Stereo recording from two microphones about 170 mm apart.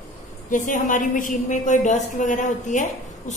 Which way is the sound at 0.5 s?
50° left (ahead or behind).